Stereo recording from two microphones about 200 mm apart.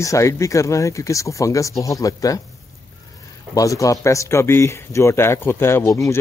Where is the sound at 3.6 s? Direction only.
15° left (ahead or behind).